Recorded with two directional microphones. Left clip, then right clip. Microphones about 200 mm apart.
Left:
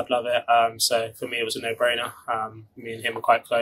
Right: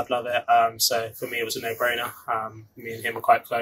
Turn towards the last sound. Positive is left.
turn(degrees=35)  # may be behind; listen again after turning